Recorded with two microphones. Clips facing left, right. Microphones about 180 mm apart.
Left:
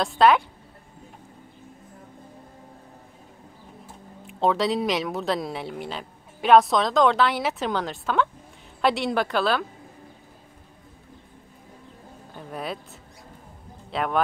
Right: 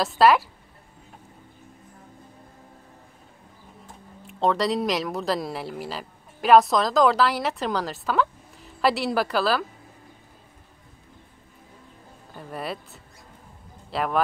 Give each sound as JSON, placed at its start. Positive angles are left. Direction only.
{"t": 0.0, "sound": "a woman's voice", "side_deg": 0}
{"t": 3.8, "sound": "a woman's voice", "side_deg": 0}
{"t": 12.4, "sound": "speech", "side_deg": 0}
{"t": 13.8, "sound": "speech", "side_deg": 0}